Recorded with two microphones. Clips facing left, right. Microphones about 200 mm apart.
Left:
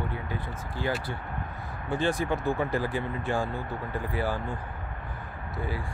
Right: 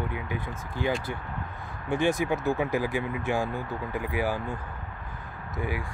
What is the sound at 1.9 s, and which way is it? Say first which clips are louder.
Speech: right 2 dB; 10° right (ahead or behind).